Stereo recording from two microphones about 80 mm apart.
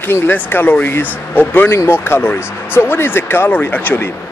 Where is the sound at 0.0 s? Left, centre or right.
Left.